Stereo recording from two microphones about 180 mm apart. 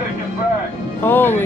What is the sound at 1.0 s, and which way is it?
Speech, 10° left (ahead or behind).